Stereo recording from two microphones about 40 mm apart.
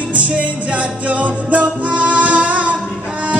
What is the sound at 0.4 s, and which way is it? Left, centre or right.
Music, right.